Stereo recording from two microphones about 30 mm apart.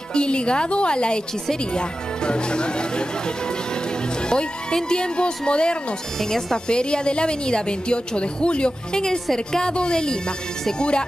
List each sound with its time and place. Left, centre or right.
0.1 s a woman's voice: left
4.3 s a woman's voice: left
6.1 s speech: centre
6.7 s a woman's voice: left
9.0 s a woman's voice: left